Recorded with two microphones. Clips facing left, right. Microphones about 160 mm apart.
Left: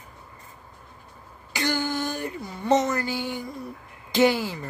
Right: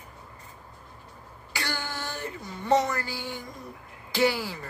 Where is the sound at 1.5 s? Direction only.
20° left (ahead or behind).